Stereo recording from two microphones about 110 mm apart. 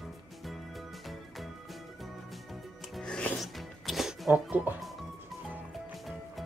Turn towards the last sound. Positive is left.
turn(degrees=0)  # may be behind; listen again after turning